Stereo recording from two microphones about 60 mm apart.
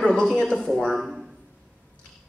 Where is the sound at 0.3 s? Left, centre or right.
Centre.